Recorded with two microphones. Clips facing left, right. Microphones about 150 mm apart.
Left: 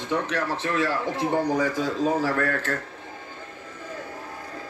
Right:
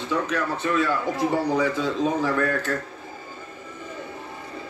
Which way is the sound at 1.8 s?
35° left (ahead or behind).